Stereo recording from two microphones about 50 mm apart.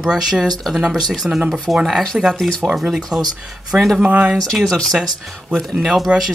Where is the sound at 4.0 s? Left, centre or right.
Right.